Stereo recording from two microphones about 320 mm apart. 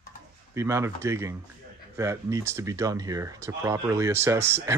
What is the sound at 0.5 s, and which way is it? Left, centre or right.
Speech, centre.